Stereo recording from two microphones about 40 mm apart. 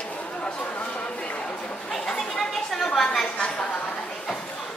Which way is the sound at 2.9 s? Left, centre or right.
Centre.